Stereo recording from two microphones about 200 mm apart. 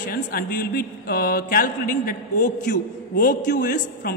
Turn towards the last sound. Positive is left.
turn(degrees=50)  # may be behind; listen again after turning